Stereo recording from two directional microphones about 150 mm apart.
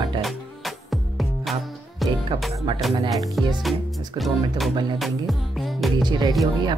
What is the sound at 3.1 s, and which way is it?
Speech, centre (ahead or behind).